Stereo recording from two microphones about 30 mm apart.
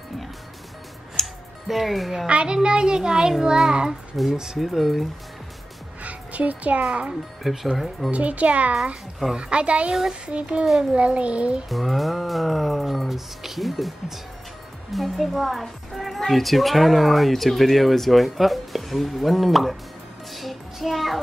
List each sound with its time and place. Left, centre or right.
1.2 s music: centre
2.2 s a child's voice: right; by 3.7 s centre
4.1 s speech: centre
6.0 s music: right
6.9 s a child's voice: right
7.7 s speech: centre
8.1 s a child's voice: right
9.4 s a child's voice: right
11.7 s a woman's voice: centre
20.3 s child singing: centre